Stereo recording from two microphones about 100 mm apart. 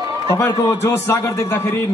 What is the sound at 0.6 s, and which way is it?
Speech, 30° left (ahead or behind).